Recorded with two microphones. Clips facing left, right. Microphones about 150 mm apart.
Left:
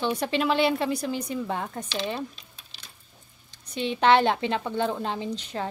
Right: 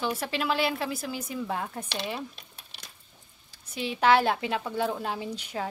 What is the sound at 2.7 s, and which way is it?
Coin, 60° right (ahead or behind).